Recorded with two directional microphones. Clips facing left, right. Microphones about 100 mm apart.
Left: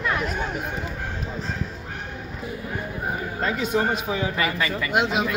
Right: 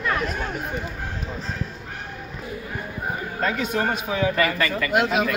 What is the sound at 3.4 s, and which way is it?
A man's voice, 10° left (ahead or behind).